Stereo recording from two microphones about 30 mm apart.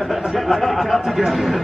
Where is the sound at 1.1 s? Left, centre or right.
Centre.